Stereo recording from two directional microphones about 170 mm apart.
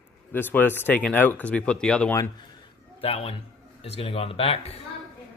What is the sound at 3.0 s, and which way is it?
Speech, 35° left (ahead or behind).